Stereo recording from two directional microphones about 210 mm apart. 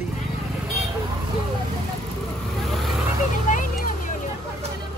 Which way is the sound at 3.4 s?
40° left (ahead or behind).